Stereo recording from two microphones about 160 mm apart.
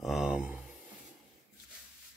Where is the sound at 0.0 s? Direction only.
5° right (ahead or behind).